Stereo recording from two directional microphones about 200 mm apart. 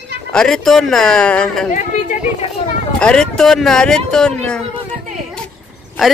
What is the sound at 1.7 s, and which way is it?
Speech, 40° left (ahead or behind).